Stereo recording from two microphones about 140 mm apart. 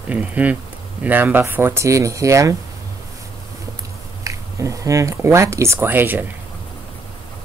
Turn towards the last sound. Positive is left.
turn(degrees=-15)  # may be behind; listen again after turning